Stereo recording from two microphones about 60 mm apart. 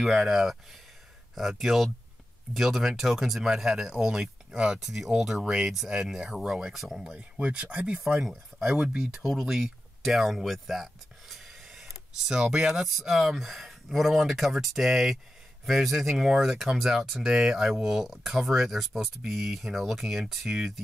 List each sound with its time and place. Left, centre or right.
0.0 s speech: centre
7.0 s speech: centre
8.3 s speech: centre
9.2 s speech: centre